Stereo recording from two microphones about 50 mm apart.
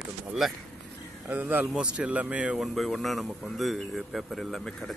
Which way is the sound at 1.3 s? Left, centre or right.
Right.